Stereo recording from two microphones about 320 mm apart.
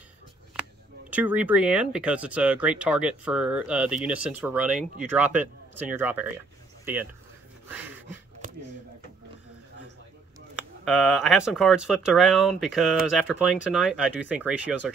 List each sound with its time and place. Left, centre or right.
1.1 s speech: centre
10.9 s speech: centre